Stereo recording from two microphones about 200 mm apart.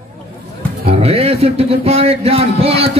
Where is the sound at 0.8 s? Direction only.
30° right (ahead or behind).